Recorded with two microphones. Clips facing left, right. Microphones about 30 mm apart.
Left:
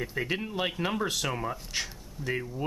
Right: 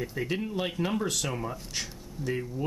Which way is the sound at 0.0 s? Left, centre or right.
Centre.